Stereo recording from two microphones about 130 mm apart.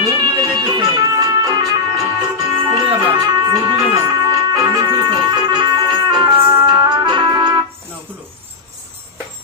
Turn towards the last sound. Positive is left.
turn(degrees=-35)  # may be behind; listen again after turning